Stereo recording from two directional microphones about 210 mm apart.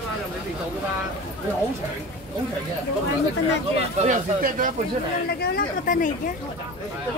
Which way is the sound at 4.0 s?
35° right (ahead or behind).